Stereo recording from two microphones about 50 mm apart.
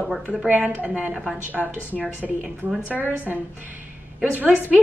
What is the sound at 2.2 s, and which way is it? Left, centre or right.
Speech, centre.